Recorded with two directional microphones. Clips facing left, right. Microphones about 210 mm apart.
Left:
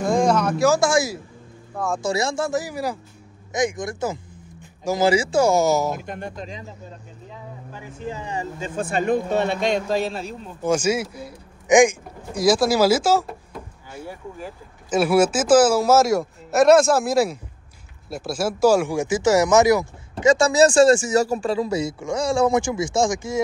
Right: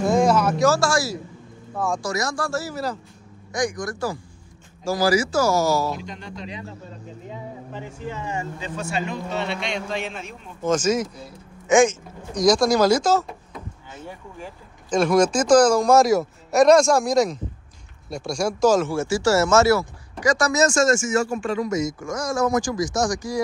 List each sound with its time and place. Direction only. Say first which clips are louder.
0.1 s a sound: left 1 dB; 5° right (ahead or behind)
0.6 s speech: left 2 dB; 15° left (ahead or behind)
3.5 s speech: left 2 dB; 25° left (ahead or behind)
5.9 s a man's voice: left 2 dB; 50° left (ahead or behind)
8.1 s speech: left 1 dB; 35° left (ahead or behind)
8.5 s a man's voice: left 3 dB; 50° left (ahead or behind)
10.6 s speech: even; 10° left (ahead or behind)